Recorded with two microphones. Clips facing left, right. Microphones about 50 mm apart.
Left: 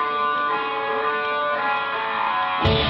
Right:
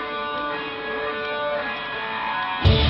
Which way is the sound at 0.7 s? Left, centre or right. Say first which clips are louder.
Left 5 dB; centre.